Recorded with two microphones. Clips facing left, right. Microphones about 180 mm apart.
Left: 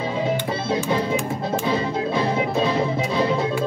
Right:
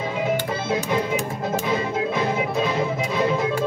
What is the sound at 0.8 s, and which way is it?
Music, 30° left (ahead or behind).